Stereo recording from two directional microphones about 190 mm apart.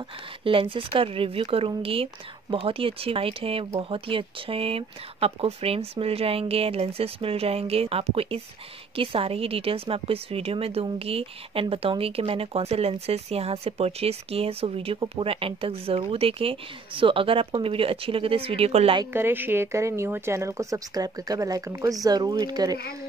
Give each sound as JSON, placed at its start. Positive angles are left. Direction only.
{"t": 0.4, "sound": "a woman's voice", "side_deg": -30}
{"t": 19.1, "sound": "speech", "side_deg": -10}